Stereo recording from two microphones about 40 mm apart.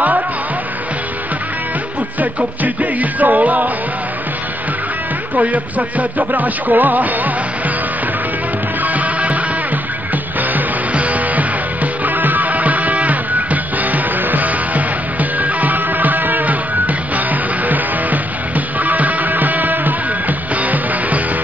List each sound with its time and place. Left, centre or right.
2.1 s music: right
5.3 s music: right
8.8 s music: right
10.5 s music: right